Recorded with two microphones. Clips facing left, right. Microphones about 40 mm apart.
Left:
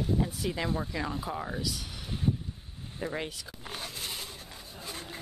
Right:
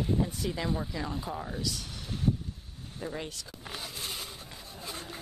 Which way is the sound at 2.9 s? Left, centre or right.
Left.